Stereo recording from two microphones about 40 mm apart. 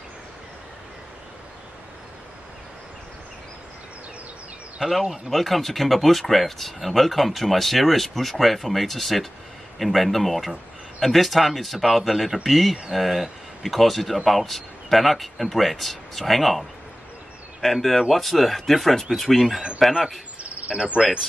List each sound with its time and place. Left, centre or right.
4.8 s cricket: right
5.3 s speech: centre
20.6 s cricket: right